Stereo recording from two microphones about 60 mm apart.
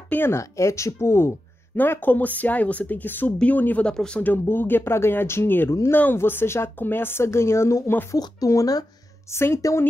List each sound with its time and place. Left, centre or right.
0.1 s speech: left
0.4 s speech: left
1.8 s speech: left
3.8 s speech: centre
4.2 s speech: left
8.1 s speech: left
9.3 s speech: left